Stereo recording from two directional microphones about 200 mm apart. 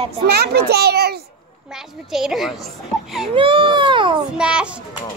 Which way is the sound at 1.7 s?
Centre (ahead or behind).